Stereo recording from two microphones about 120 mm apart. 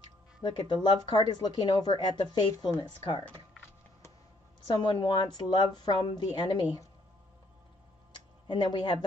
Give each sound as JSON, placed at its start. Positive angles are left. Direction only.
{"t": 0.4, "sound": "speech", "side_deg": 40}
{"t": 4.8, "sound": "speech", "side_deg": 40}
{"t": 8.5, "sound": "speech", "side_deg": 40}